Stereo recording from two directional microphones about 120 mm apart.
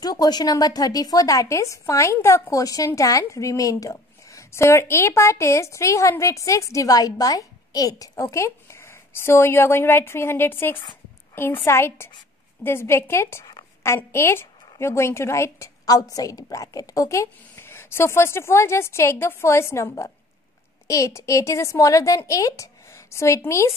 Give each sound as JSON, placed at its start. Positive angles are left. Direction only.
{"t": 0.0, "sound": "a woman's voice", "side_deg": 35}